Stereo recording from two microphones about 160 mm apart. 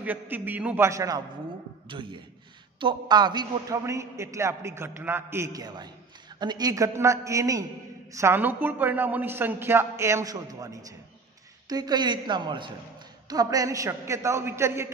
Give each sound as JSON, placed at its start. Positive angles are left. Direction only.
{"t": 0.0, "sound": "a man's voice", "side_deg": -10}
{"t": 1.9, "sound": "a man's voice", "side_deg": -30}